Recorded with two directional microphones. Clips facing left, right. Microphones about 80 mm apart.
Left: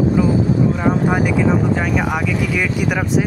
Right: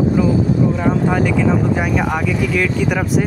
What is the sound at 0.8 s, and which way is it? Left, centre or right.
Speech, centre.